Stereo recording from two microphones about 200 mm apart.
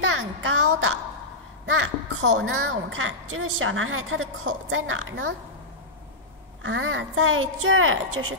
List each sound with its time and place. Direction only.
0.0 s a sound: 80° right
1.7 s a woman's voice: 75° right (ahead or behind)
6.6 s a woman's voice: 85° right